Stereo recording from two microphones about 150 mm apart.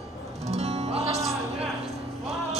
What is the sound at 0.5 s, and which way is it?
Music, 45° right (ahead or behind).